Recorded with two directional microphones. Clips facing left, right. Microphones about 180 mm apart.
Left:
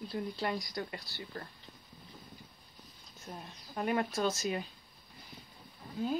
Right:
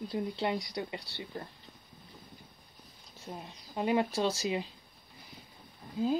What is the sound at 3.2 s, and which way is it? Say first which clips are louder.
Speech: right 3 dB; 20° right (ahead or behind).